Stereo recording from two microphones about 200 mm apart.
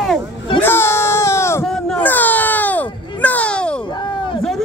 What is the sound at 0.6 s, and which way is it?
Speech, 10° left (ahead or behind).